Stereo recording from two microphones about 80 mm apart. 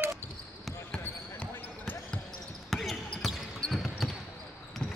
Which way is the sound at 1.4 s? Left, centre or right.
Centre.